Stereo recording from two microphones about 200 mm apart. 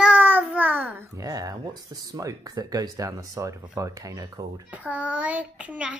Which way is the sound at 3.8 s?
15° right (ahead or behind).